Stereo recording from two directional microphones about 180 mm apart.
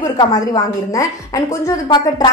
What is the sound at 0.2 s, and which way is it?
A woman's voice, 20° left (ahead or behind).